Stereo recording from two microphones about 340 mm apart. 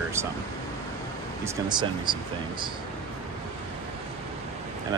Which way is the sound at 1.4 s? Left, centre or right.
Centre.